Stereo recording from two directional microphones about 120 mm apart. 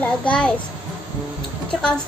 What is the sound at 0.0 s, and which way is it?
Speech, 10° left (ahead or behind).